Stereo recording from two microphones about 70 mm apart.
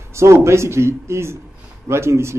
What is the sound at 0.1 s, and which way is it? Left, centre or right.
Speech, right.